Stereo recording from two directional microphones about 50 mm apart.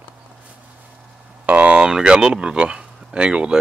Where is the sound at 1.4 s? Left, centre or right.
Right.